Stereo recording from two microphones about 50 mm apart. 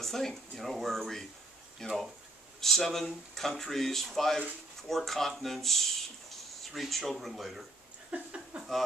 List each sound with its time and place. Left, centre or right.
0.0 s speech: centre
8.1 s speech: right